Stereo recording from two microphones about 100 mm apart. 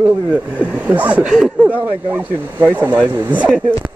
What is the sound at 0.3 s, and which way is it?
Speech, 15° right (ahead or behind).